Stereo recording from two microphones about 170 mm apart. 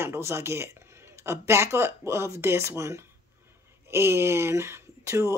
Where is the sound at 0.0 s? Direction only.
15° right (ahead or behind).